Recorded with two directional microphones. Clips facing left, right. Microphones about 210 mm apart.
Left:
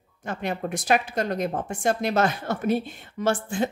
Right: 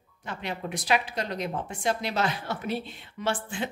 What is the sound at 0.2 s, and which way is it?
Speech, 50° left (ahead or behind).